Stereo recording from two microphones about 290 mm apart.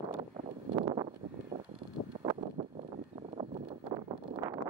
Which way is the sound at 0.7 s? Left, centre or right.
Centre.